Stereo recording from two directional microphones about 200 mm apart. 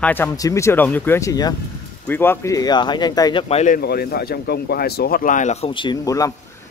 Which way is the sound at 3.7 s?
50° left (ahead or behind).